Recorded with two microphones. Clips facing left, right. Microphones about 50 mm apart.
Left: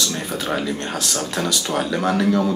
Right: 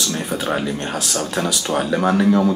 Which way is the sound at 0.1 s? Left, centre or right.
Centre.